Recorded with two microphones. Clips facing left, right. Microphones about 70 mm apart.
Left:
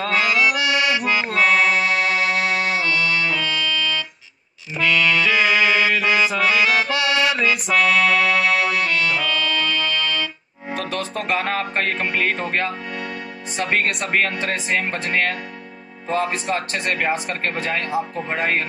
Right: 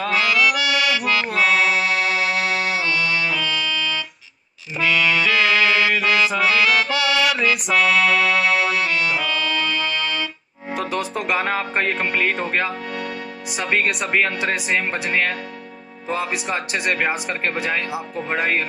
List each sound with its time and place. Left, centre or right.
0.2 s music: centre
0.6 s accordion: left
1.0 s accordion: centre
1.3 s music: centre
2.8 s music: centre
5.3 s accordion: centre
7.3 s music: centre
10.9 s speech: centre
13.5 s speech: centre
14.4 s speech: centre
18.3 s speech: centre